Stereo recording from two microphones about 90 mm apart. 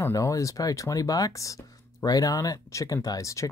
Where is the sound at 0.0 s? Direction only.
35° left (ahead or behind).